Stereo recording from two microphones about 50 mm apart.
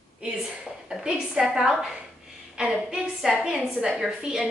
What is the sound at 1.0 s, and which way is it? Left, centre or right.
A woman's voice, centre.